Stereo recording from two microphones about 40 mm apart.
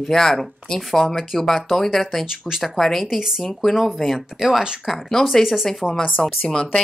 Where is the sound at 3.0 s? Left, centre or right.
Centre.